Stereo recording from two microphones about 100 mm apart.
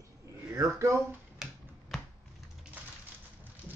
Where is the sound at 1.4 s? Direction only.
5° right (ahead or behind).